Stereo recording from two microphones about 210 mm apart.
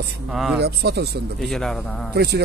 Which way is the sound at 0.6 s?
50° right (ahead or behind).